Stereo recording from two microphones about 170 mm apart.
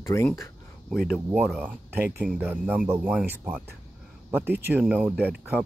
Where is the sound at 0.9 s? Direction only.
Centre (ahead or behind).